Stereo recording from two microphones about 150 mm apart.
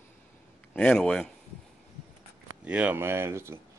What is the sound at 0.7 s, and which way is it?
Speech, 5° left (ahead or behind).